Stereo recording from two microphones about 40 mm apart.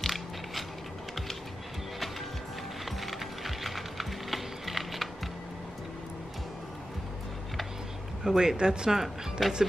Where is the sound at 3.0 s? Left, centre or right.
Centre.